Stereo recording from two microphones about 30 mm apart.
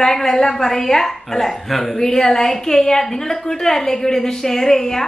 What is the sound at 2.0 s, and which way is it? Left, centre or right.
A woman's voice, centre.